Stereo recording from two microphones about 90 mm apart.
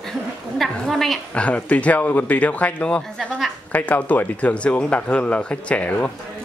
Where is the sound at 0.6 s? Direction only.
Centre (ahead or behind).